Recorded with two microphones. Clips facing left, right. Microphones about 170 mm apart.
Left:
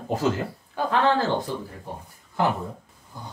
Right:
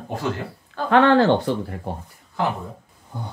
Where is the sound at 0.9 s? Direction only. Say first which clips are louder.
Right 7 dB; 70° right (ahead or behind).